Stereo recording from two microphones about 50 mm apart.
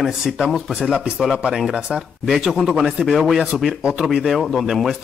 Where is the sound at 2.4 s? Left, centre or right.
Centre.